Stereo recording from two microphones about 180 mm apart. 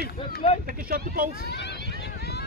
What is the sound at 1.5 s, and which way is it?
Vehicle, 70° left (ahead or behind).